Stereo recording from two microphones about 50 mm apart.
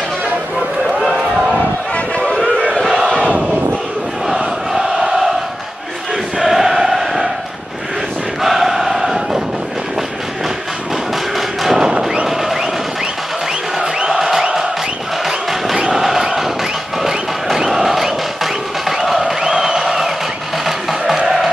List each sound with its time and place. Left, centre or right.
0.9 s crowd: centre
2.1 s music: centre
2.8 s crowd: centre
3.3 s a sound: centre
4.4 s crowd: centre
6.4 s choir: centre
8.4 s crowd: centre
11.3 s thump: centre
11.8 s a sound: centre
13.7 s music: centre